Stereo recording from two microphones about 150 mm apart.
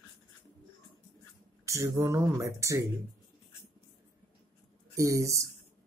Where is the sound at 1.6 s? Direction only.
20° right (ahead or behind).